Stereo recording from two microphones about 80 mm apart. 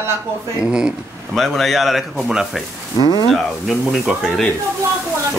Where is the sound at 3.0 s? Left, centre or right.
Left.